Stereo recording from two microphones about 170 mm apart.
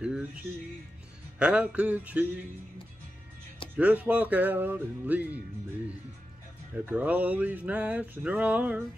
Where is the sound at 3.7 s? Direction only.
10° right (ahead or behind).